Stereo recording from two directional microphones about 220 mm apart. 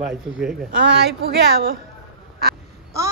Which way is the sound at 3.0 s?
15° right (ahead or behind).